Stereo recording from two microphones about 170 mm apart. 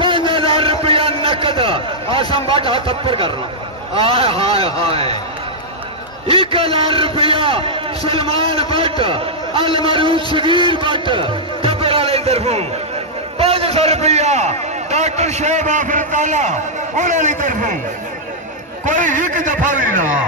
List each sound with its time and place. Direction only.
0.0 s a sound: 30° right (ahead or behind)
2.3 s a man's voice: 35° right (ahead or behind)
6.2 s a man's voice: 35° right (ahead or behind); by 17.7 s 50° right (ahead or behind)
18.9 s a man's voice: 50° right (ahead or behind)